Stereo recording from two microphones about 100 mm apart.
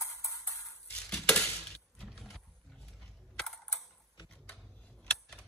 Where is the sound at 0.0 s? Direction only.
30° left (ahead or behind).